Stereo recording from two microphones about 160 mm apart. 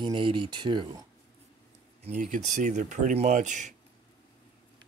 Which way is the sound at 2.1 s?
50° right (ahead or behind).